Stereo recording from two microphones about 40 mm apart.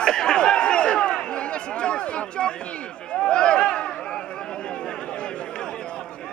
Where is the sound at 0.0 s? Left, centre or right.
Centre.